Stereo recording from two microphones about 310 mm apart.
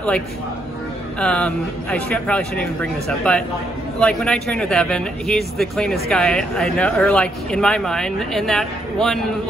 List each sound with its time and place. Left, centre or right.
1.2 s speech: centre